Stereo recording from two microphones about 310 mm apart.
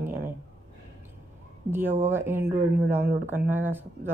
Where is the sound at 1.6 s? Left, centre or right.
Centre.